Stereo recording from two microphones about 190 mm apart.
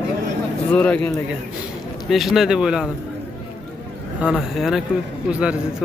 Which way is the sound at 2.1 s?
Centre (ahead or behind).